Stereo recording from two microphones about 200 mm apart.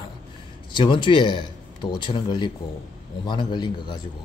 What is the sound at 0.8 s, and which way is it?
A man's voice, 25° left (ahead or behind).